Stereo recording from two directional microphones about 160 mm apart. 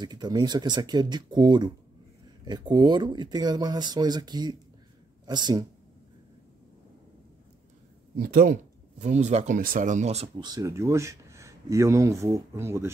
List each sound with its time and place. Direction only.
0.0 s speech: 25° right (ahead or behind)
8.2 s speech: 65° right (ahead or behind)
9.0 s speech: 45° right (ahead or behind)
10.4 s speech: 20° right (ahead or behind)